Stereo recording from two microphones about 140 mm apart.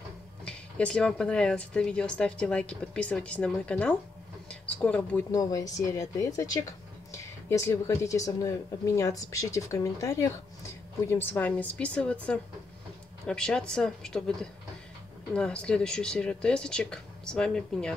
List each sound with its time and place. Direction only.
0.5 s speech: 10° left (ahead or behind)
4.5 s a sound: 5° left (ahead or behind)
5.3 s speech: 25° left (ahead or behind); by 17.9 s 5° left (ahead or behind)